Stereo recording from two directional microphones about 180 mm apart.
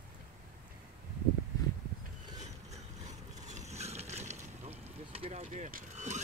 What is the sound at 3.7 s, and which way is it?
Boat, 35° right (ahead or behind).